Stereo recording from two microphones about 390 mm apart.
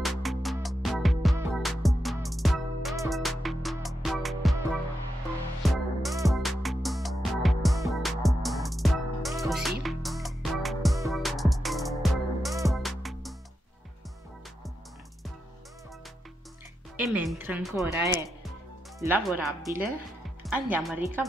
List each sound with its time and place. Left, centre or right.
0.0 s music: centre
5.6 s music: centre
16.9 s speech: centre
20.2 s music: centre